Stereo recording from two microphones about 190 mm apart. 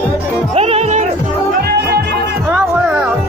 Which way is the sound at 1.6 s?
55° right (ahead or behind).